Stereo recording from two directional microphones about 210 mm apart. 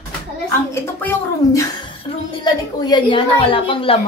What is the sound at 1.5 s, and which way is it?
A woman's voice, 15° left (ahead or behind).